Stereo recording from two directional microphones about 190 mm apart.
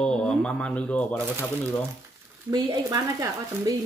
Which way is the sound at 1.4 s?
5° left (ahead or behind).